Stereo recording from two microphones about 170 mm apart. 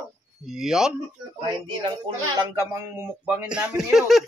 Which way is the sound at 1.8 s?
25° right (ahead or behind).